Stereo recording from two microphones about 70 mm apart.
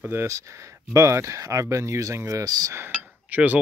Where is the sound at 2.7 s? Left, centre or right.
Right.